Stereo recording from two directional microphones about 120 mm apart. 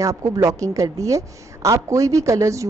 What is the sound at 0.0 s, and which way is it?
A woman's voice, 30° right (ahead or behind).